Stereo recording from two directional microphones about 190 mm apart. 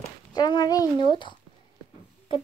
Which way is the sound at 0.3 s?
20° left (ahead or behind).